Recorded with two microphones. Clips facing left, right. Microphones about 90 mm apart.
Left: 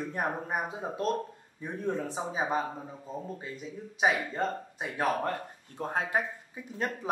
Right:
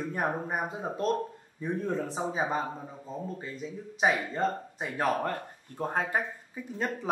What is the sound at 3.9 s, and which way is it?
Speech, 5° left (ahead or behind).